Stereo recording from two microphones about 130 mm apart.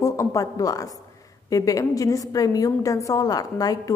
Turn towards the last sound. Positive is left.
turn(degrees=30)  # may be behind; listen again after turning